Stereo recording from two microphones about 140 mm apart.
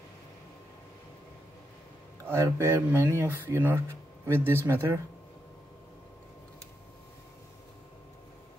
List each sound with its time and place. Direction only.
2.2 s speech: 20° right (ahead or behind)